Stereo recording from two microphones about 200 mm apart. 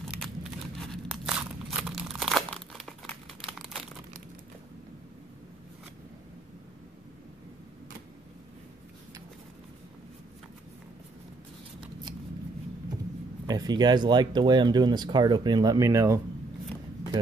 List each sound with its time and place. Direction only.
0.1 s crumpling: centre (ahead or behind)
13.5 s speech: 20° right (ahead or behind)